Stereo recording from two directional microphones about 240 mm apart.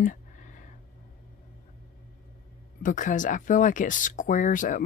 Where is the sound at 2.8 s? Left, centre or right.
Left.